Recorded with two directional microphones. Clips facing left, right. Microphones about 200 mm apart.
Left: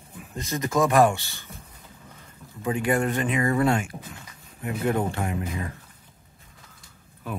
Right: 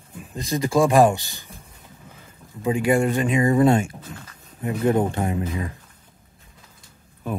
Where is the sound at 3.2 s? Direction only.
20° right (ahead or behind).